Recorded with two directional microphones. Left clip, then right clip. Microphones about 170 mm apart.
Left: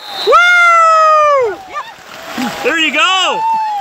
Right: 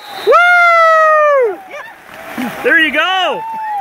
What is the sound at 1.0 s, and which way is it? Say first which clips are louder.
Cat: even; 5° right (ahead or behind).